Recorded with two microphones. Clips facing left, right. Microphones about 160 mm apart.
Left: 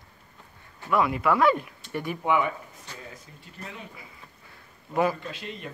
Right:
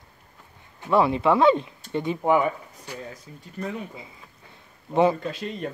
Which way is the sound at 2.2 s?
40° right (ahead or behind).